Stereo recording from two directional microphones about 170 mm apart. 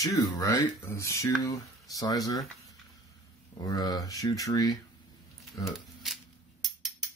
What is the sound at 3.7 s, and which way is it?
Speech, 20° left (ahead or behind).